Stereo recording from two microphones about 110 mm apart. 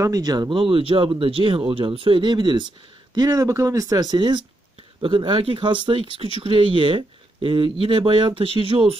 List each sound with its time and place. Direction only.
0.0 s speech: 35° right (ahead or behind)
0.6 s speech: 55° right (ahead or behind)
3.2 s speech: 30° right (ahead or behind); by 8.9 s 55° right (ahead or behind)